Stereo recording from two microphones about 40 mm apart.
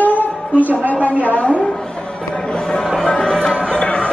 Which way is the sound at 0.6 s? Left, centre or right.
Left.